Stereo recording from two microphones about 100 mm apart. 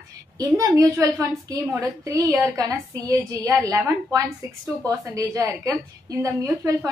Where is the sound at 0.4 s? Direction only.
35° right (ahead or behind).